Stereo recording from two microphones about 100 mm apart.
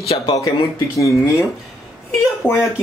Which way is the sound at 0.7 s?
35° left (ahead or behind).